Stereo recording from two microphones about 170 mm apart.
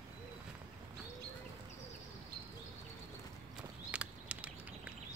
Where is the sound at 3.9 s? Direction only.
10° right (ahead or behind).